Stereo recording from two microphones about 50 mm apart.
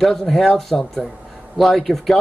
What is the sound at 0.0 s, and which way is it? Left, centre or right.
Speech, centre.